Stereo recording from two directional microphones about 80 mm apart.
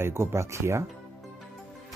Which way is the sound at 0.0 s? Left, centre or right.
Right.